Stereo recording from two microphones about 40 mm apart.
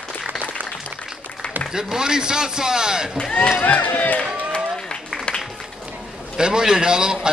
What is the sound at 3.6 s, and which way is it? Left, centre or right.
Speech, left.